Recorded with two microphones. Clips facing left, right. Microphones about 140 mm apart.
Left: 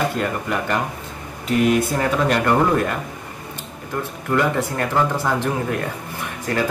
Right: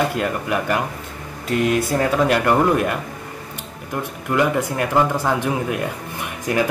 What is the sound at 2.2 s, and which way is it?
Speech, 10° right (ahead or behind).